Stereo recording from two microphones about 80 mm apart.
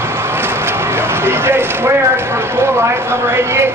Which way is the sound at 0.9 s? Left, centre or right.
Right.